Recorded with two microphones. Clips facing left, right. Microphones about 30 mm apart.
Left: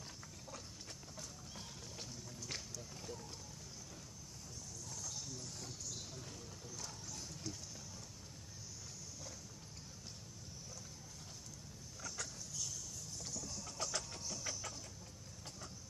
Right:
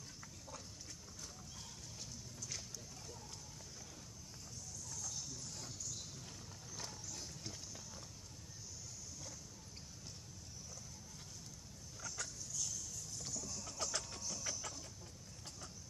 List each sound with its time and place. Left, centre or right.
2.0 s water: left
4.8 s a sound: centre
7.5 s horse: right
12.0 s dog: centre
13.2 s vehicle: centre